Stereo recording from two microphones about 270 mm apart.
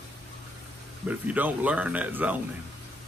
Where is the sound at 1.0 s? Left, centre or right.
Centre.